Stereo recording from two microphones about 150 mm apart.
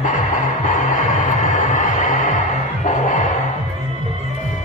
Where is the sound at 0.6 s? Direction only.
55° left (ahead or behind).